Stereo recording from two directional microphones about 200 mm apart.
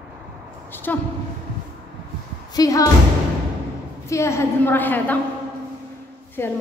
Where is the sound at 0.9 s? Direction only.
10° left (ahead or behind).